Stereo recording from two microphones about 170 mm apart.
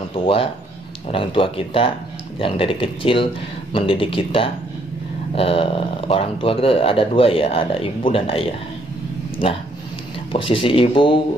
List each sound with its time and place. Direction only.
0.1 s speech: 30° left (ahead or behind)
10.3 s speech: 30° left (ahead or behind)